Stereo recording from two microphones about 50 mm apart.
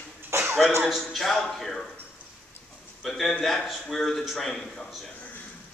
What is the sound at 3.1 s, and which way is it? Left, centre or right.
A man's voice, centre.